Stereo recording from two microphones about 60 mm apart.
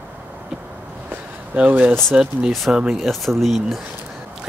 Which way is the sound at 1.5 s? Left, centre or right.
Right.